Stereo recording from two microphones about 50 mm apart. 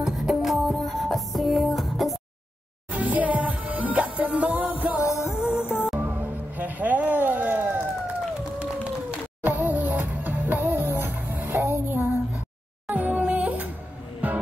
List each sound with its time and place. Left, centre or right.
0.0 s music: centre
2.9 s music: right
5.9 s music: right
8.5 s a sound: right
9.4 s music: right
10.9 s music: right
11.5 s child singing: right
12.8 s music: right